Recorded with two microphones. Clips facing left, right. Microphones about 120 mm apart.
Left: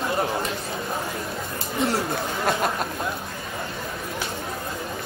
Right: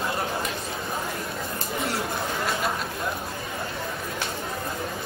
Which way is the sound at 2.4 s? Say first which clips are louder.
Left 6 dB; 50° left (ahead or behind).